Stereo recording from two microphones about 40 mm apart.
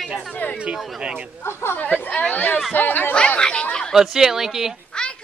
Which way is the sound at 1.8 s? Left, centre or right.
Left.